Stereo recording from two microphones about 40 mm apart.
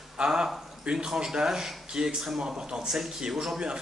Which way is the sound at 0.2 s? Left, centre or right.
Centre.